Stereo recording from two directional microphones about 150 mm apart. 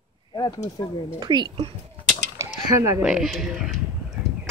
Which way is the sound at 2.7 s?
20° right (ahead or behind).